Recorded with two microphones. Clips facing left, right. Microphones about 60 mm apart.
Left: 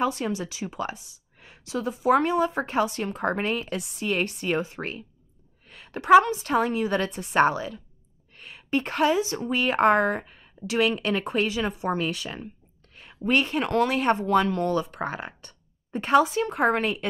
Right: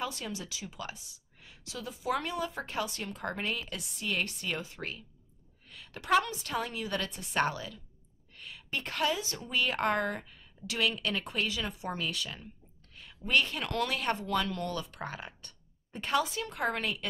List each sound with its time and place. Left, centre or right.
0.0 s speech: left
5.7 s a sound: left
6.2 s a woman's voice: left